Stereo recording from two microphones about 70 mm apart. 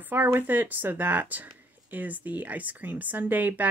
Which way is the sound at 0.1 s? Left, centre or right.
Right.